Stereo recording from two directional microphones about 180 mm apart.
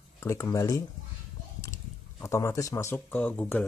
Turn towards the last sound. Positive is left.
turn(degrees=10)  # may be behind; listen again after turning